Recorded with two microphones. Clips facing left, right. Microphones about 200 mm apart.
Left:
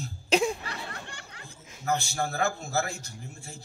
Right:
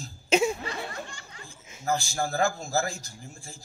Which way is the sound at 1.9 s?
35° right (ahead or behind).